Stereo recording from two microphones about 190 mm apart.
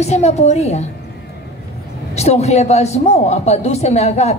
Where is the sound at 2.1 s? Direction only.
35° left (ahead or behind).